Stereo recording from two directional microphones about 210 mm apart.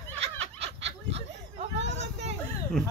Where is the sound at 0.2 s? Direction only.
30° right (ahead or behind).